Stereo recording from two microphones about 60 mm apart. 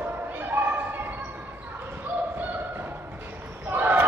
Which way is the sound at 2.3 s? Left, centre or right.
Right.